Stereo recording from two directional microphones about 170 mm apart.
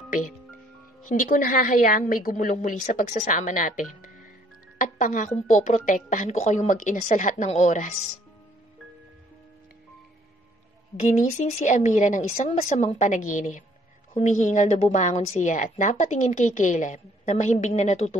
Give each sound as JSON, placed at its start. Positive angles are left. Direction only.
{"t": 1.0, "sound": "a woman's voice", "side_deg": 50}
{"t": 11.0, "sound": "a woman's voice", "side_deg": 40}